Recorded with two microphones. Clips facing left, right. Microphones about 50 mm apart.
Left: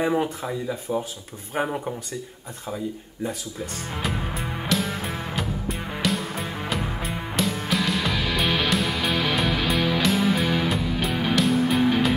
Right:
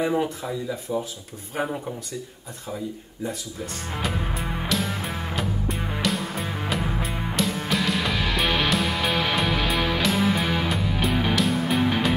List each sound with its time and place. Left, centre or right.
0.2 s speech: left
3.9 s music: centre